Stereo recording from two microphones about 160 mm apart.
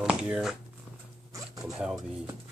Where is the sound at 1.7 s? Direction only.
5° right (ahead or behind).